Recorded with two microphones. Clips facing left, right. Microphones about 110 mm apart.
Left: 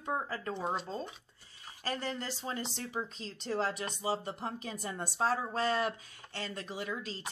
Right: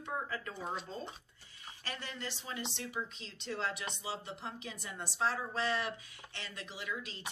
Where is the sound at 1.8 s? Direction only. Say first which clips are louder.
Left 7 dB; 35° left (ahead or behind).